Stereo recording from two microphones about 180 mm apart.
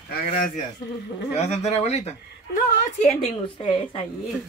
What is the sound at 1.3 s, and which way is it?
Speech, 35° left (ahead or behind).